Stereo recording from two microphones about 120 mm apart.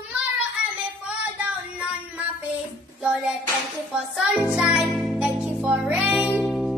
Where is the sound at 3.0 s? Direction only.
5° right (ahead or behind).